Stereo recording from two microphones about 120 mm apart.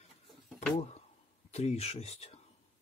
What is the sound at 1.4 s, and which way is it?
Speech, 65° left (ahead or behind).